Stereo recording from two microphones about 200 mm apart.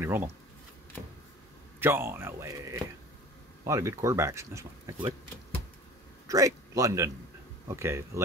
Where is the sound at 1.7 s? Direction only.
10° right (ahead or behind).